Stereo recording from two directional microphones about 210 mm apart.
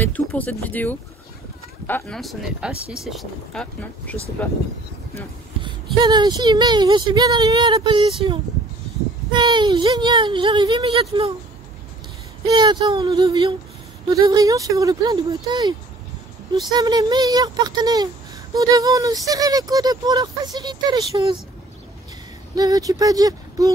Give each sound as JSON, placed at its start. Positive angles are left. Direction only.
{"t": 0.0, "sound": "speech", "side_deg": 5}
{"t": 5.6, "sound": "speech", "side_deg": -20}
{"t": 12.4, "sound": "speech", "side_deg": -20}
{"t": 16.7, "sound": "speech", "side_deg": -20}
{"t": 22.6, "sound": "speech", "side_deg": -15}